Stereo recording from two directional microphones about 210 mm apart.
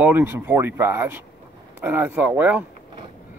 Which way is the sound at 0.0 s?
10° right (ahead or behind).